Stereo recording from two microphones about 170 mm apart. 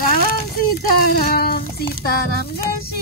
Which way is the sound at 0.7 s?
65° left (ahead or behind).